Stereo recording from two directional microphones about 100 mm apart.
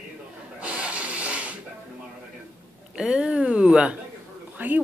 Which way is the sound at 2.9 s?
5° right (ahead or behind).